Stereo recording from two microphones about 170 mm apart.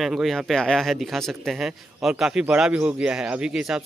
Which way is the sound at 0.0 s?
Centre (ahead or behind).